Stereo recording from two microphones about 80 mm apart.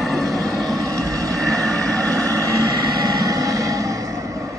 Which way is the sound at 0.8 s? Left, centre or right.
Right.